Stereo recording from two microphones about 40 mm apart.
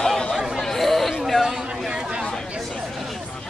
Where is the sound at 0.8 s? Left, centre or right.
Centre.